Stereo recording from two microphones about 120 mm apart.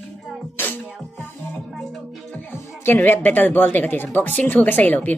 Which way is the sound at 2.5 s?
20° left (ahead or behind).